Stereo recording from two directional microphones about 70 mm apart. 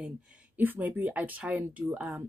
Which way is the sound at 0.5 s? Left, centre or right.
Right.